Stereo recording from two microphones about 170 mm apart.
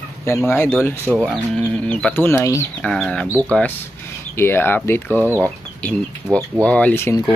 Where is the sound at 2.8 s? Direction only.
5° left (ahead or behind).